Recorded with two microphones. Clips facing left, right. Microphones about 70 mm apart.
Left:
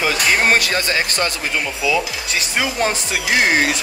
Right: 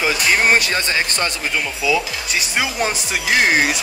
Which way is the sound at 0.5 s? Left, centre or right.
Right.